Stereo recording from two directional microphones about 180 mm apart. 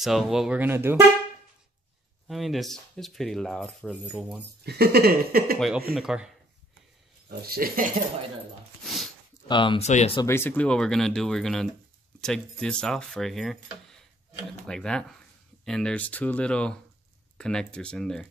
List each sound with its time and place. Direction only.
0.0 s speech: centre (ahead or behind)
2.2 s speech: centre (ahead or behind)
4.6 s speech: 60° right (ahead or behind)
5.9 s speech: 5° right (ahead or behind)
7.2 s speech: 60° right (ahead or behind)
8.8 s a sound: centre (ahead or behind)
9.5 s speech: 25° left (ahead or behind)
9.8 s speech: 40° left (ahead or behind)
10.2 s speech: 15° left (ahead or behind)